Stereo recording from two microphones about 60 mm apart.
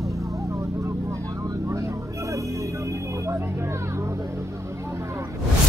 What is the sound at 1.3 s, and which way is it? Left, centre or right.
Vehicle, right.